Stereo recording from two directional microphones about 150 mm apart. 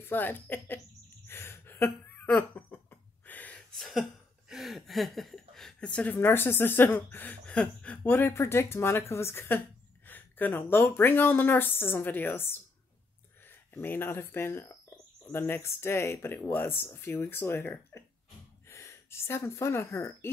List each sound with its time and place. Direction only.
0.0 s speech: 15° left (ahead or behind)
10.0 s a sound: 10° left (ahead or behind)
10.7 s speech: 15° left (ahead or behind)